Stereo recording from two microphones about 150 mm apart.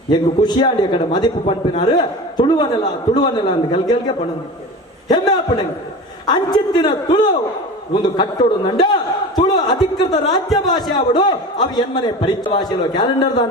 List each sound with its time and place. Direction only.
0.1 s a man's voice: 30° left (ahead or behind)